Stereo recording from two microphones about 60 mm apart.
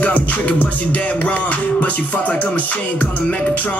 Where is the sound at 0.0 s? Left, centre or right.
Left.